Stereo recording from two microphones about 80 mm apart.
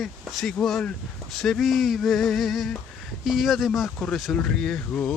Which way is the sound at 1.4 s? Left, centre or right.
Centre.